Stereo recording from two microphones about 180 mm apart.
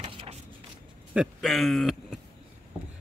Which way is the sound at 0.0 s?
35° right (ahead or behind).